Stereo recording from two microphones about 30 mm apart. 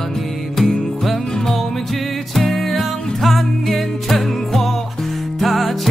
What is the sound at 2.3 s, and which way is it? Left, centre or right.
Music, centre.